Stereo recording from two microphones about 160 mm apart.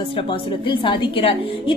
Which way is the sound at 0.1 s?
35° left (ahead or behind).